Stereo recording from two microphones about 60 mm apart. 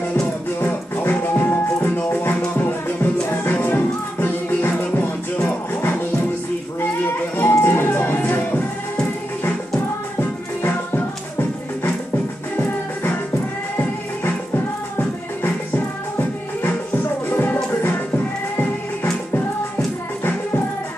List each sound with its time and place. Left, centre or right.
0.6 s music: left
7.3 s music: left
10.6 s music: left